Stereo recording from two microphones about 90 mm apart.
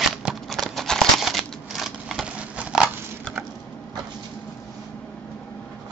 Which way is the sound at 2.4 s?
15° right (ahead or behind).